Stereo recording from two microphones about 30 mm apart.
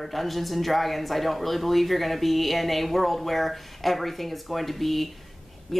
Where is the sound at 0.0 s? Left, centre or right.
Centre.